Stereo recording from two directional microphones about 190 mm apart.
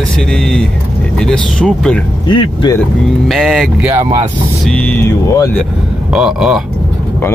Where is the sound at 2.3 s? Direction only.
25° left (ahead or behind).